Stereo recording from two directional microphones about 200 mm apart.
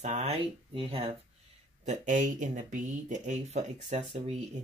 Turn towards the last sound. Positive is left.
turn(degrees=-30)  # may be behind; listen again after turning